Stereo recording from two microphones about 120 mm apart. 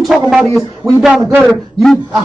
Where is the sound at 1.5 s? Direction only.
Centre (ahead or behind).